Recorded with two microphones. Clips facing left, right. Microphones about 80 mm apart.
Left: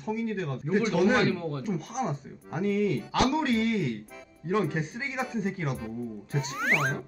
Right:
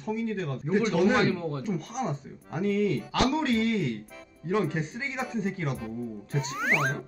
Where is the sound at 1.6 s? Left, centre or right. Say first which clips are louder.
Even; centre.